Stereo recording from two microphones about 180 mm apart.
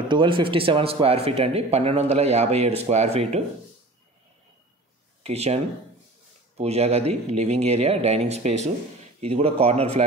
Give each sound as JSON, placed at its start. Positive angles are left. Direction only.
{"t": 0.1, "sound": "speech", "side_deg": -25}
{"t": 5.2, "sound": "speech", "side_deg": -35}